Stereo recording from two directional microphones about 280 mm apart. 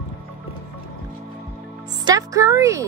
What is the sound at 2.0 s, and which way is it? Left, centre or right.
Music, centre.